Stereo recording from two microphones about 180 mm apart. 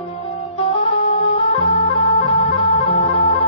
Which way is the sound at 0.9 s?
30° left (ahead or behind).